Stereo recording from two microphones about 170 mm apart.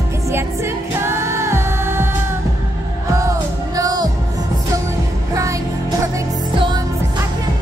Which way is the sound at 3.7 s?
20° right (ahead or behind).